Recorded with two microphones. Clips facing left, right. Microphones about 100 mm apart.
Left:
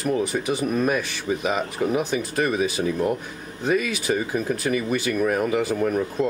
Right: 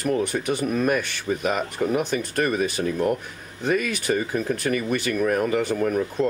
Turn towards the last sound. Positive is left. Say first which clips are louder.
# even
turn(degrees=0)  # may be behind; listen again after turning